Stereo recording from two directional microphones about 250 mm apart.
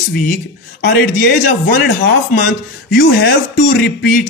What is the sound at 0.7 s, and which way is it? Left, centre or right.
A man's voice, left.